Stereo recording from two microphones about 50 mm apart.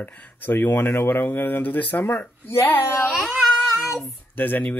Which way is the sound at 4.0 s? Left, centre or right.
Left.